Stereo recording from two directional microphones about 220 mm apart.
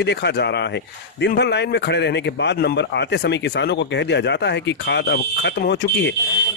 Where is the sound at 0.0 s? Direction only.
50° left (ahead or behind).